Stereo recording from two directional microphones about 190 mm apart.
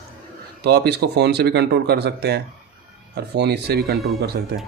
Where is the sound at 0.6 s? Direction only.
60° right (ahead or behind).